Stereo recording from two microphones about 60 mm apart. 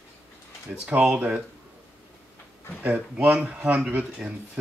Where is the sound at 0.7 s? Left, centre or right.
Centre.